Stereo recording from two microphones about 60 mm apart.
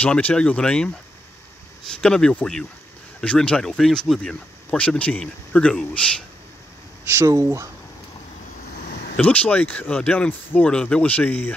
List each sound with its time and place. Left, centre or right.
0.0 s speech: left
7.2 s speech: right
9.2 s speech: left